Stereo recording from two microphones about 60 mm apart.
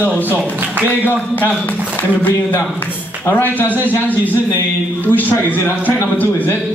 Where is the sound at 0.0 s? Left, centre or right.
Right.